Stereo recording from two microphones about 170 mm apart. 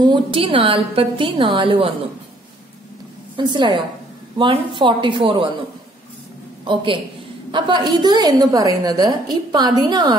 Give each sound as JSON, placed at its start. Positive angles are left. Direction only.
{"t": 0.0, "sound": "a woman's voice", "side_deg": -30}
{"t": 3.3, "sound": "a woman's voice", "side_deg": -25}
{"t": 6.6, "sound": "a woman's voice", "side_deg": -30}